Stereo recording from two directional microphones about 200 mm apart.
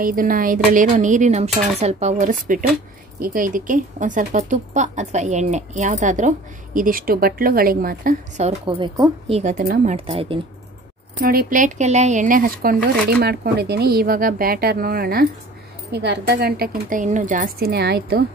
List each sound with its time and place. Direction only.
0.0 s speech: 45° right (ahead or behind); by 9.1 s 20° right (ahead or behind)
9.3 s speech: 40° right (ahead or behind)
9.9 s speech: 30° right (ahead or behind)
11.1 s a woman's voice: 45° right (ahead or behind)